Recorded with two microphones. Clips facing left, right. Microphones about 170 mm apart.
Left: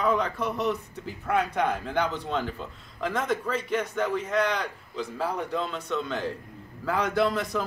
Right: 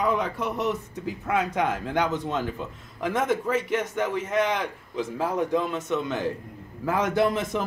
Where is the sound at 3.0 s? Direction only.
20° right (ahead or behind).